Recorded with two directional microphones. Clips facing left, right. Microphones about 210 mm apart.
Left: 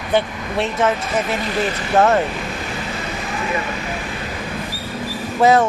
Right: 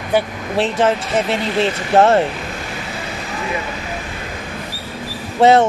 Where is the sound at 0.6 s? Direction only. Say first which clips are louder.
Right 3 dB; 30° right (ahead or behind).